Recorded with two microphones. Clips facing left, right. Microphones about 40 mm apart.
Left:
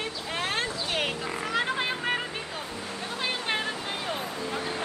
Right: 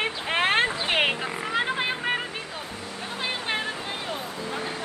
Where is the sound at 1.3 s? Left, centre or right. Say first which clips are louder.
Right 1 dB; centre.